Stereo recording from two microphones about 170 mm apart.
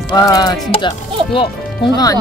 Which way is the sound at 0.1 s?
20° left (ahead or behind).